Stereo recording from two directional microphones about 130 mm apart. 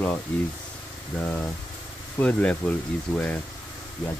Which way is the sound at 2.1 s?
10° left (ahead or behind).